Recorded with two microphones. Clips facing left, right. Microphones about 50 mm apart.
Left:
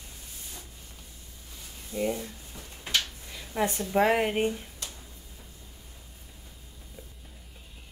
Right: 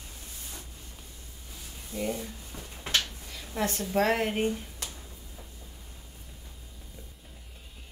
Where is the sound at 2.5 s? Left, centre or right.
Right.